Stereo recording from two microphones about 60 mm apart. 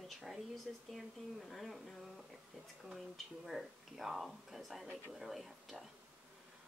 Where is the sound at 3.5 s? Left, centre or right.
Centre.